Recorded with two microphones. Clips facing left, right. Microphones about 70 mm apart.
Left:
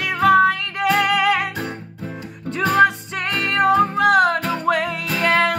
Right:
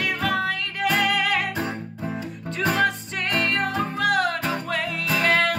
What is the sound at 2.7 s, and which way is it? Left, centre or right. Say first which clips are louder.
Music: left 7 dB; left.